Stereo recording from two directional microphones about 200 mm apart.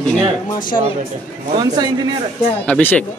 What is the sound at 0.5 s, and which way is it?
Speech, 45° left (ahead or behind).